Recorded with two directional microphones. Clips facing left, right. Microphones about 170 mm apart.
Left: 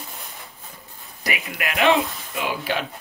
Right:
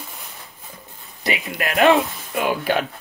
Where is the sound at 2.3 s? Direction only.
50° right (ahead or behind).